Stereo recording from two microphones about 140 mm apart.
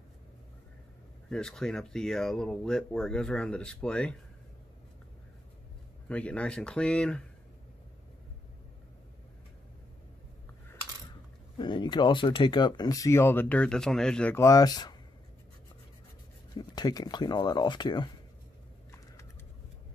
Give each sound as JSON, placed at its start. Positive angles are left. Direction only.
{"t": 1.3, "sound": "speech", "side_deg": 5}
{"t": 6.0, "sound": "speech", "side_deg": 10}
{"t": 11.5, "sound": "speech", "side_deg": 35}
{"t": 14.3, "sound": "speech", "side_deg": 20}
{"t": 16.5, "sound": "speech", "side_deg": 30}